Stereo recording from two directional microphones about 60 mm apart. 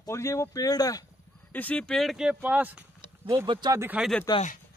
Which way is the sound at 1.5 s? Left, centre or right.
Left.